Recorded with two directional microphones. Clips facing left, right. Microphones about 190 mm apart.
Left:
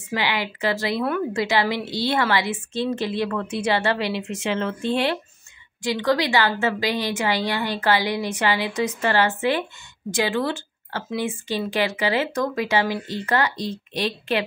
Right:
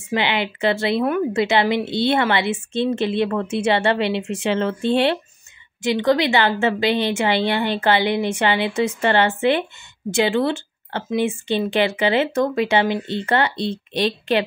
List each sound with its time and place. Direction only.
0.1 s a woman's voice: 20° right (ahead or behind)